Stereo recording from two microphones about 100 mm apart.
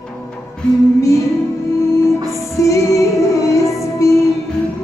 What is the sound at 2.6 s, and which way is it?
Music, 30° left (ahead or behind).